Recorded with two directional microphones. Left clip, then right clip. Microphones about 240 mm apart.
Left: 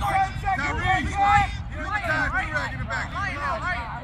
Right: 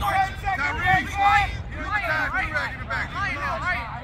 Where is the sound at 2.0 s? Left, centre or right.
Centre.